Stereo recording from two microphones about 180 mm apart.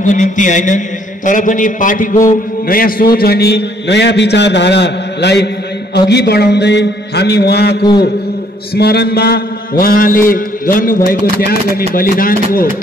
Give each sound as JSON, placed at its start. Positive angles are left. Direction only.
{"t": 0.0, "sound": "a man's voice", "side_deg": 45}